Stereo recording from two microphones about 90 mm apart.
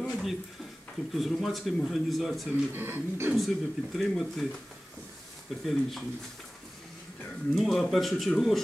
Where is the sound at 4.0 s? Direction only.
Centre (ahead or behind).